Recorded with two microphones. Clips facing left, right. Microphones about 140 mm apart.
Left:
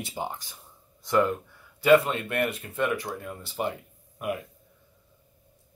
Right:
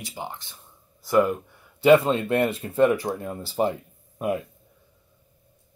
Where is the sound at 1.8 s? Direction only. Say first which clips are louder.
Right 3 dB; 25° right (ahead or behind).